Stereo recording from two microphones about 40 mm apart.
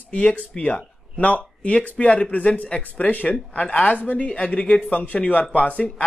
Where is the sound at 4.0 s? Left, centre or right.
Left.